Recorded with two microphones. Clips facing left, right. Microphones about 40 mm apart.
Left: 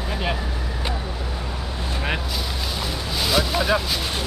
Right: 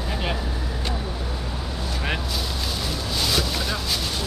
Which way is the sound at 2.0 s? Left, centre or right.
Centre.